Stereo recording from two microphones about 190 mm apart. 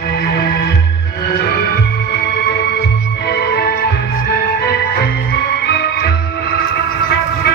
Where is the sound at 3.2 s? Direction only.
60° left (ahead or behind).